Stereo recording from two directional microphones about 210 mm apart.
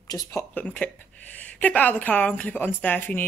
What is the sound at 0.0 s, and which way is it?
Speech, 15° left (ahead or behind).